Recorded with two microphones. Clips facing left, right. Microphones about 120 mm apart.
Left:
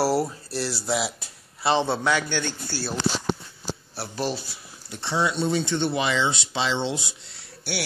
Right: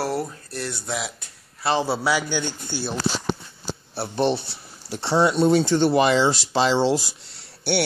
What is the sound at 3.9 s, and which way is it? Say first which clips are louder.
Speech: right 9 dB; 25° right (ahead or behind).